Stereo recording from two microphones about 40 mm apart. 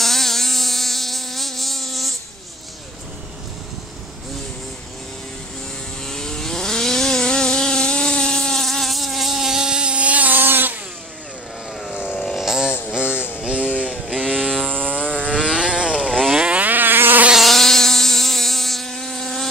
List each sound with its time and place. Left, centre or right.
0.0 s insect: centre
6.0 s vehicle: centre; by 10.4 s right
10.4 s a sound: right
11.7 s vehicle: centre
12.4 s a sound: centre
12.9 s a sound: right
14.0 s vehicle: right
16.6 s insect: right
17.4 s insect: centre